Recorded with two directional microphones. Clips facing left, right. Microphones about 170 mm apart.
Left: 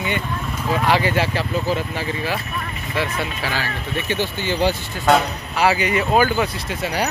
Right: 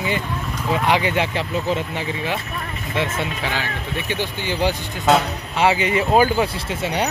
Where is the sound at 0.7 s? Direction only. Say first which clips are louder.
Left 1 dB; 20° right (ahead or behind).